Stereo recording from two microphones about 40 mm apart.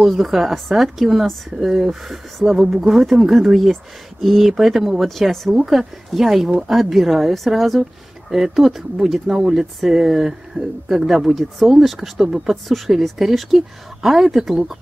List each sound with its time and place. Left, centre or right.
0.0 s a woman's voice: centre
5.3 s a woman's voice: centre
5.7 s a woman's voice: centre
10.6 s speech: right
10.9 s a woman's voice: centre